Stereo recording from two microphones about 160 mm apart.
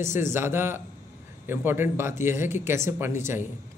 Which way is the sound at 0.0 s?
15° right (ahead or behind).